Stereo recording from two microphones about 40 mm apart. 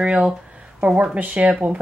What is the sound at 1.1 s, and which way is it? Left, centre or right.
Speech, right.